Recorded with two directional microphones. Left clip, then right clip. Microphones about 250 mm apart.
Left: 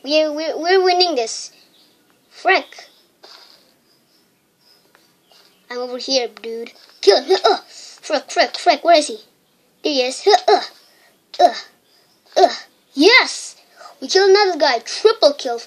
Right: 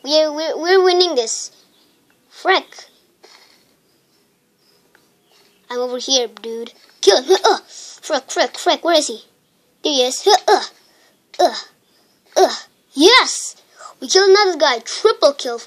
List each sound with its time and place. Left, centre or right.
0.0 s a child's voice: centre
3.2 s a sound: centre
5.7 s a child's voice: centre